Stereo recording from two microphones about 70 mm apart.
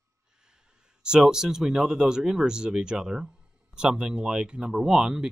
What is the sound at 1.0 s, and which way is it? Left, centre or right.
Speech, centre.